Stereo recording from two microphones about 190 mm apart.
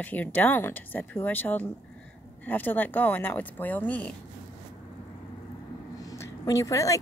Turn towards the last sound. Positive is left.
turn(degrees=15)  # may be behind; listen again after turning